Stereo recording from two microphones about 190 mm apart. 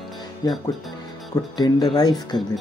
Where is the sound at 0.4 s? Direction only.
20° left (ahead or behind).